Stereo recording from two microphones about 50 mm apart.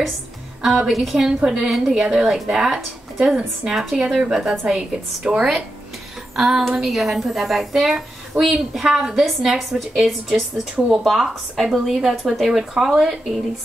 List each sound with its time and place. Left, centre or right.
0.6 s a woman's voice: centre